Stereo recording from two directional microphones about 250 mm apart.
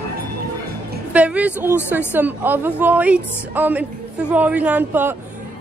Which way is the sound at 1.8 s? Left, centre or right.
Centre.